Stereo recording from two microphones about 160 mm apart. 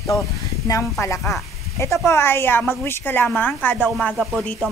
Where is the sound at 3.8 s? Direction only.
Centre (ahead or behind).